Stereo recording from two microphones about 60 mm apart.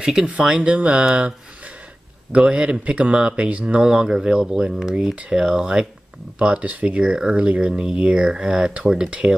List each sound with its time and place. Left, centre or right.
0.0 s speech: centre
2.3 s speech: centre
6.3 s speech: right